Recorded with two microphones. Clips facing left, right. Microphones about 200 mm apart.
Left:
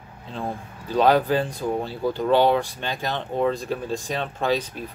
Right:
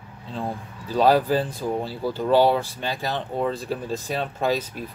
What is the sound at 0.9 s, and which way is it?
Speech, 5° right (ahead or behind).